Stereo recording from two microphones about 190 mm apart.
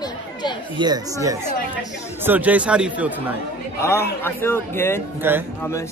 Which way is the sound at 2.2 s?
10° right (ahead or behind).